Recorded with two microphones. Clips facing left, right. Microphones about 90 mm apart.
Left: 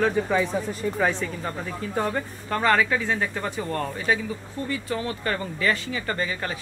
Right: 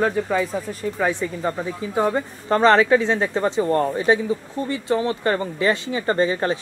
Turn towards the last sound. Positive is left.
turn(degrees=-30)  # may be behind; listen again after turning